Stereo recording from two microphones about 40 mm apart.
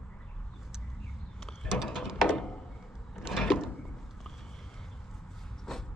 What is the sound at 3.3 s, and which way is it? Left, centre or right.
Drawer open or close, centre.